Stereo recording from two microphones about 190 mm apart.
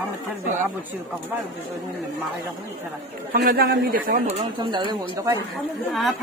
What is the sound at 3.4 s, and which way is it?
Speech, 55° right (ahead or behind).